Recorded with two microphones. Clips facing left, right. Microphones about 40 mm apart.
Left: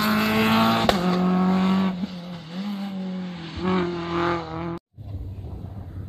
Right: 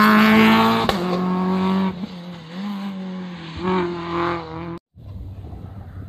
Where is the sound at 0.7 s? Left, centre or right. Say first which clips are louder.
Right 2 dB; centre.